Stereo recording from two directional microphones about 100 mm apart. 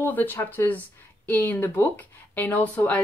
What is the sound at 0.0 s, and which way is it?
Speech, 20° left (ahead or behind).